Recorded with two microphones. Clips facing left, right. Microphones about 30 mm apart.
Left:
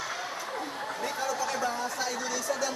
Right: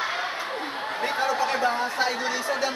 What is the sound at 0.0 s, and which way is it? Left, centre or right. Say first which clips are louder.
A man's voice: right 7 dB; right.